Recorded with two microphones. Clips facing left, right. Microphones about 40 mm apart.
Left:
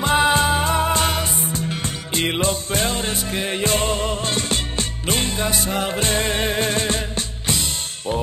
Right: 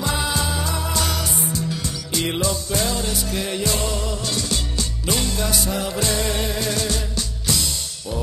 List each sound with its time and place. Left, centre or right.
0.0 s music: left